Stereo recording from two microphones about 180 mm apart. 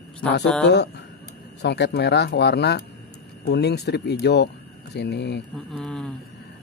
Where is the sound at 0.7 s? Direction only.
70° left (ahead or behind).